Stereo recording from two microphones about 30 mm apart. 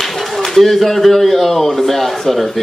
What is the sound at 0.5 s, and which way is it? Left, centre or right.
Speech, centre.